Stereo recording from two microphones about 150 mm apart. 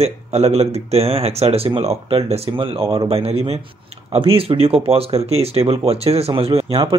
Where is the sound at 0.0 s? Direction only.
45° right (ahead or behind).